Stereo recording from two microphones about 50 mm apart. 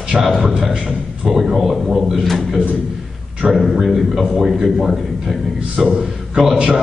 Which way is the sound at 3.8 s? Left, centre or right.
Centre.